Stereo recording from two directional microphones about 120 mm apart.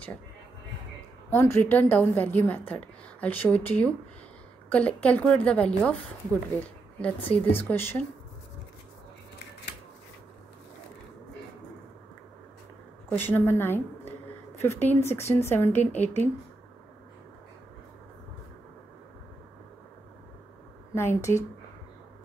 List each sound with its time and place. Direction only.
1.3 s a woman's voice: 20° left (ahead or behind)
13.1 s a woman's voice: 15° left (ahead or behind)
20.9 s speech: 20° left (ahead or behind)